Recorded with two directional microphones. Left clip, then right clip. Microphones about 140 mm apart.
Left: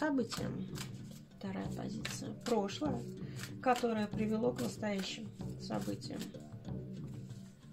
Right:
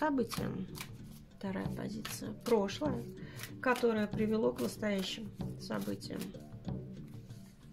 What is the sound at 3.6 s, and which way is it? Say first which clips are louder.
Speech: right 2 dB; 70° right (ahead or behind).